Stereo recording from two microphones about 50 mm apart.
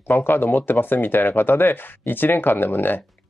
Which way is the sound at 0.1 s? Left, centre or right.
Left.